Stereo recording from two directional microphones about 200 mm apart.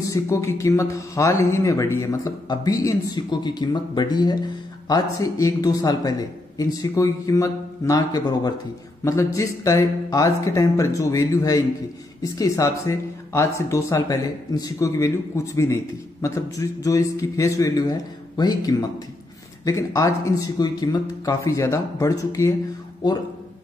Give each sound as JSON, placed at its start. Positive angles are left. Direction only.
{"t": 0.0, "sound": "speech", "side_deg": 15}